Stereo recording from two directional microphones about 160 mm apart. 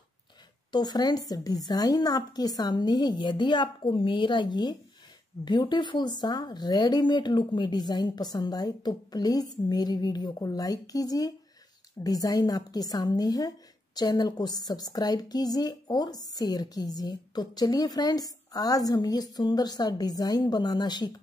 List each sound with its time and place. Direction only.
0.7 s a woman's voice: 25° left (ahead or behind)